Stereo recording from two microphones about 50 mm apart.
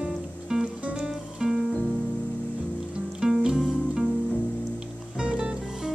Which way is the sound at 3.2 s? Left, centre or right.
Centre.